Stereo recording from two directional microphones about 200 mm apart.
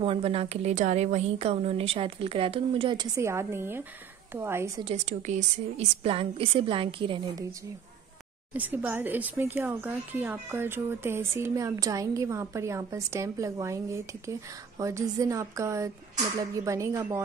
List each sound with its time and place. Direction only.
0.0 s a woman's voice: 30° right (ahead or behind)
3.2 s speech: 15° right (ahead or behind)
4.8 s a woman's voice: 35° right (ahead or behind)
8.5 s speech: 10° right (ahead or behind)